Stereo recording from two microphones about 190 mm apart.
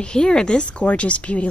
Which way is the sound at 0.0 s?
5° left (ahead or behind).